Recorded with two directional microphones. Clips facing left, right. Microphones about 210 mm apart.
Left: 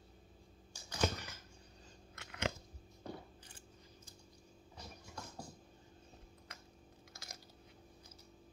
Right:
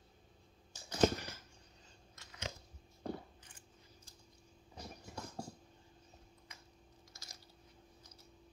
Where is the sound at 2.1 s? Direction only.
65° left (ahead or behind).